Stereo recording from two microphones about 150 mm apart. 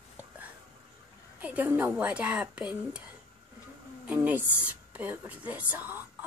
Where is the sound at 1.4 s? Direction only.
10° right (ahead or behind).